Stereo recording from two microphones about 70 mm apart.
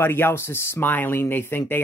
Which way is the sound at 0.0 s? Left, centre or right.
Left.